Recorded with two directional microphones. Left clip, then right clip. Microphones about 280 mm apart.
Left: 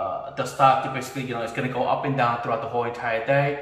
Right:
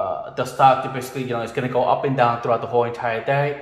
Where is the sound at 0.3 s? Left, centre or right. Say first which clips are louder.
Right 3 dB; right.